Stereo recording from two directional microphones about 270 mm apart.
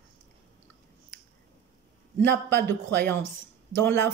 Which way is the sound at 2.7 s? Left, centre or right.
Centre.